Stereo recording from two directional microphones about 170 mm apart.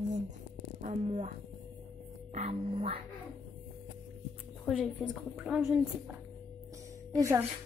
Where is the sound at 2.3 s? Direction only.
35° right (ahead or behind).